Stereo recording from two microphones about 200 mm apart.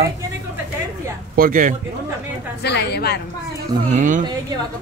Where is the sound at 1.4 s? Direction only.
45° right (ahead or behind).